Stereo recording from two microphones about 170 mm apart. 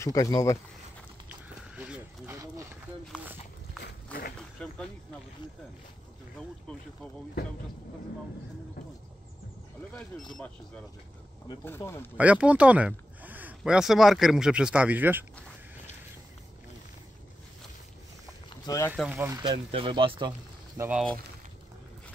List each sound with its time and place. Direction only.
0.0 s speech: 20° left (ahead or behind)
1.3 s a sound: 10° right (ahead or behind)
4.4 s a sound: 5° left (ahead or behind)
10.1 s speech: 10° left (ahead or behind)
11.6 s speech: 15° left (ahead or behind)
12.2 s speech: 10° right (ahead or behind)
18.7 s speech: 25° left (ahead or behind)
19.1 s speech: 20° right (ahead or behind)
20.7 s speech: 15° right (ahead or behind)